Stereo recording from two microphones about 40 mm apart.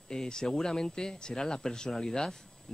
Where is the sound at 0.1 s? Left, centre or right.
Centre.